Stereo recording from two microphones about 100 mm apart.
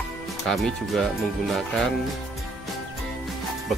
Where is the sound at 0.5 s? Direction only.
Centre (ahead or behind).